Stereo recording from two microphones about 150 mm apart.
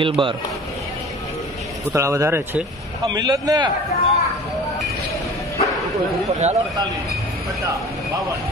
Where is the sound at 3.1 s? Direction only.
25° right (ahead or behind).